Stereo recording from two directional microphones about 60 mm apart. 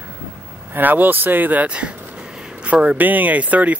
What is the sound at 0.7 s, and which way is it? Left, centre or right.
Speech, right.